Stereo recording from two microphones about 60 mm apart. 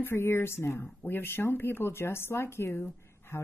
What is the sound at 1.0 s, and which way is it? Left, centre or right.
A woman's voice, left.